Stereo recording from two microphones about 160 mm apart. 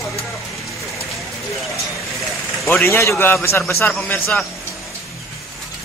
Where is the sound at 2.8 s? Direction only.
15° left (ahead or behind).